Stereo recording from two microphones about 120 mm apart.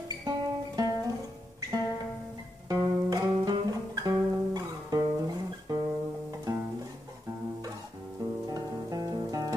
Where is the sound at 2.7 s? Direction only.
30° right (ahead or behind).